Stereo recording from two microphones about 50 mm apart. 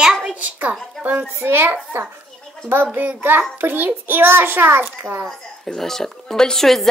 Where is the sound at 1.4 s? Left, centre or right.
Right.